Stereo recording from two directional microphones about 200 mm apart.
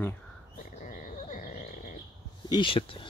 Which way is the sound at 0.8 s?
40° left (ahead or behind).